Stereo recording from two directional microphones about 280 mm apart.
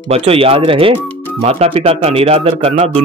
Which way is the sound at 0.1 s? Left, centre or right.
Right.